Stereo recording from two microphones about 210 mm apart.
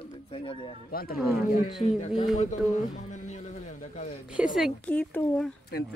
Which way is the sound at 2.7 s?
35° left (ahead or behind).